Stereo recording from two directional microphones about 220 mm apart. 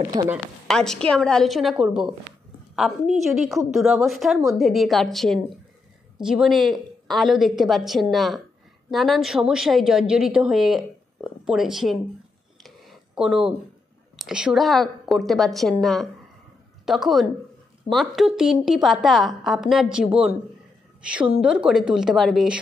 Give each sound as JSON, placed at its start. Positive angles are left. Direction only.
{"t": 0.1, "sound": "a woman's voice", "side_deg": -20}
{"t": 0.7, "sound": "a woman's voice", "side_deg": 0}
{"t": 12.6, "sound": "a sound", "side_deg": 0}
{"t": 14.1, "sound": "a woman's voice", "side_deg": 0}
{"t": 21.1, "sound": "a woman's voice", "side_deg": -5}